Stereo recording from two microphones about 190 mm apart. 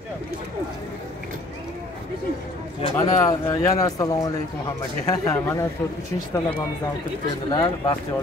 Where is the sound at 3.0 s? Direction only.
20° left (ahead or behind).